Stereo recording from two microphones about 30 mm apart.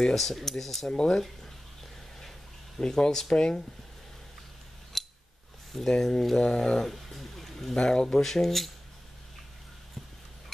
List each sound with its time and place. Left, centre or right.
0.1 s speech: centre
0.8 s speech: left
2.8 s speech: left
4.9 s scissors: centre
5.9 s speech: centre
6.3 s speech: left
6.8 s speech: centre
7.7 s speech: left
8.1 s speech: centre